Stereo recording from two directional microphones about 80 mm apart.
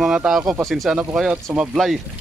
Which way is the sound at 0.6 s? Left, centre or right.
Centre.